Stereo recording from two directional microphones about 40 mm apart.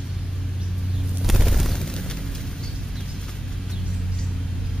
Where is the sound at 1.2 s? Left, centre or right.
Centre.